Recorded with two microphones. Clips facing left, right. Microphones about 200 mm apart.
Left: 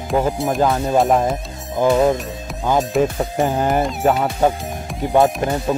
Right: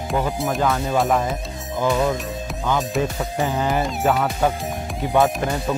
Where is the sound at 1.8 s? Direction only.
35° left (ahead or behind).